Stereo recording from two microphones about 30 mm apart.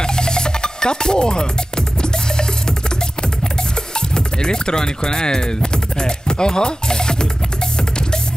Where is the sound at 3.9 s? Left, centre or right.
Left.